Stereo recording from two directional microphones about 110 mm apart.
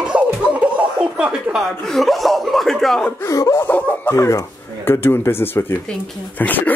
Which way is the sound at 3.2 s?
30° left (ahead or behind).